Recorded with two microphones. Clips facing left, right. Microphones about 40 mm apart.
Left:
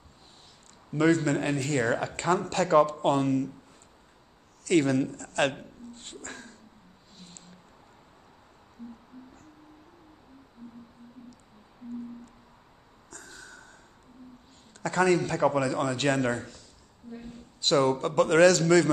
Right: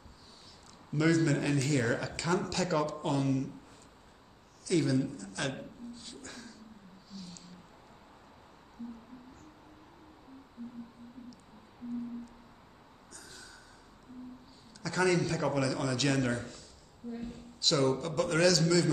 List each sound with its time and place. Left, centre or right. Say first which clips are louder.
0.9 s speech: left 4 dB; left
4.6 s a man's voice: left 5 dB; left
7.1 s a sound: right 4 dB; left
13.1 s a sound: left 6 dB; left
14.8 s speech: left 5 dB; left
17.6 s a man's voice: left 5 dB; left